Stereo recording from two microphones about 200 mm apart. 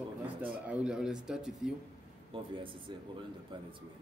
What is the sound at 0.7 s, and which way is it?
Speech, 5° right (ahead or behind).